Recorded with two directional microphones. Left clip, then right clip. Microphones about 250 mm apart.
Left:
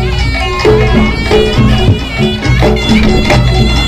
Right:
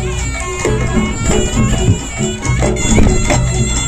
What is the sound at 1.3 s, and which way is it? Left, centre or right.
Music, right.